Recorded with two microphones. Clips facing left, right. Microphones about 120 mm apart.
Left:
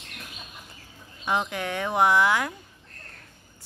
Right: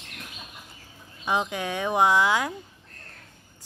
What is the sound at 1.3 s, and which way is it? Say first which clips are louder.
Speech: even; 15° right (ahead or behind).